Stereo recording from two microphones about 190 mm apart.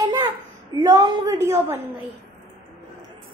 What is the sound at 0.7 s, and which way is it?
A woman's voice, 20° right (ahead or behind).